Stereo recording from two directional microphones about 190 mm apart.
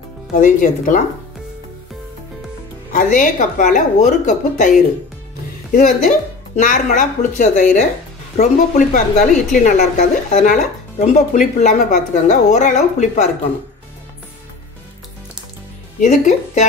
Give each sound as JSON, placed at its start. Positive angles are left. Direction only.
{"t": 0.3, "sound": "speech", "side_deg": 45}
{"t": 2.9, "sound": "speech", "side_deg": 45}
{"t": 16.0, "sound": "speech", "side_deg": 40}